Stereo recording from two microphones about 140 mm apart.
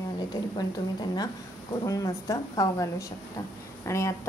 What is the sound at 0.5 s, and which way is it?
A woman's voice, 30° left (ahead or behind).